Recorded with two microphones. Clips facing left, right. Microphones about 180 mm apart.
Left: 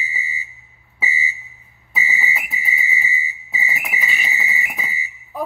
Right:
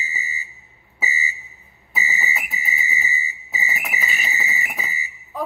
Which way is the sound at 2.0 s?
40° right (ahead or behind).